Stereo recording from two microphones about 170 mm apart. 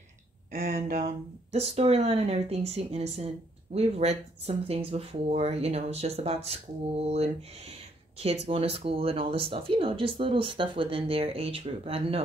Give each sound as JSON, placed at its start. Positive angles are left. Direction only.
{"t": 0.5, "sound": "speech", "side_deg": -60}
{"t": 0.7, "sound": "speech", "side_deg": -40}